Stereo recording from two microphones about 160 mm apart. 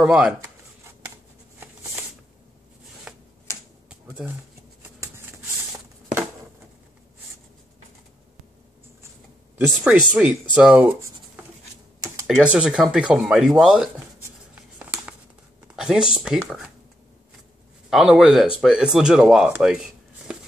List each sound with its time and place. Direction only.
0.0 s speech: 5° right (ahead or behind)
1.6 s a sound: 10° right (ahead or behind)
3.1 s a sound: 5° right (ahead or behind)
3.5 s finger snapping: 15° left (ahead or behind)
3.9 s a sound: 10° right (ahead or behind)
9.6 s speech: 10° right (ahead or behind)
12.3 s speech: 5° right (ahead or behind)
14.5 s writing: 10° right (ahead or behind)
15.7 s speech: 5° right (ahead or behind)
17.8 s speech: centre (ahead or behind)